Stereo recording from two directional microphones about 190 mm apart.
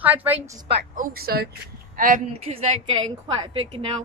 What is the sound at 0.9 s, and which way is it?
Speech, 50° right (ahead or behind).